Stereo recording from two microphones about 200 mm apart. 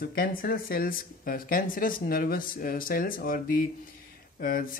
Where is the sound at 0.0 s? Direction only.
45° left (ahead or behind).